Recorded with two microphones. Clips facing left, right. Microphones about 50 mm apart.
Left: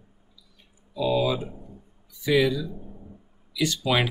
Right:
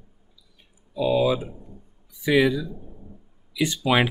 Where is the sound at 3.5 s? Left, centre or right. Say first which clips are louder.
Right 3 dB; centre.